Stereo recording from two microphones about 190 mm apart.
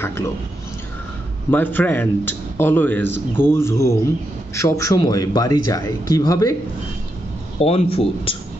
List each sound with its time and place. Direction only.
1.5 s a man's voice: 10° left (ahead or behind)
7.5 s speech: 30° left (ahead or behind)